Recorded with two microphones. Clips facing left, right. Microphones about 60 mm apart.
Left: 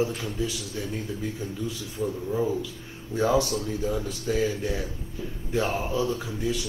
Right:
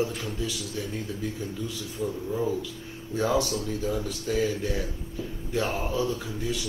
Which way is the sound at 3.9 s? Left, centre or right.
Left.